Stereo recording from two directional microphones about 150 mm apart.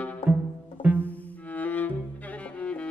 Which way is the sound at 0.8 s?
10° right (ahead or behind).